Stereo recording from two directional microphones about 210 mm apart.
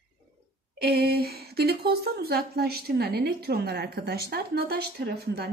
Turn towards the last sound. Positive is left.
turn(degrees=-50)  # may be behind; listen again after turning